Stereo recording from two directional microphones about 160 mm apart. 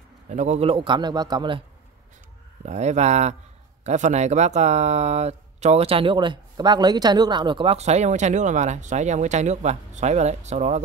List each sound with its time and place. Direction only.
0.3 s a man's voice: 45° right (ahead or behind); by 1.6 s 30° right (ahead or behind)
2.6 s speech: 45° right (ahead or behind)